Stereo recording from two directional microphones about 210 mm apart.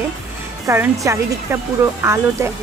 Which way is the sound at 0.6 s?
15° right (ahead or behind).